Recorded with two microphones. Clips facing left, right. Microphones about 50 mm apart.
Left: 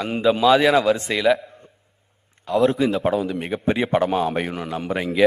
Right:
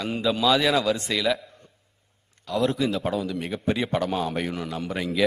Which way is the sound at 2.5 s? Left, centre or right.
Left.